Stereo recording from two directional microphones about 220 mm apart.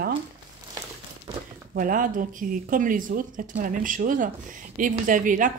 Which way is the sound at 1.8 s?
40° right (ahead or behind).